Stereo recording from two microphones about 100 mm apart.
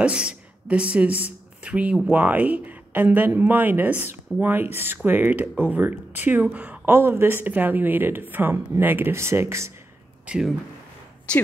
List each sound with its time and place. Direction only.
0.0 s a woman's voice: 10° right (ahead or behind); by 9.7 s 30° right (ahead or behind)
10.2 s speech: 10° right (ahead or behind)
11.3 s a woman's voice: 10° left (ahead or behind)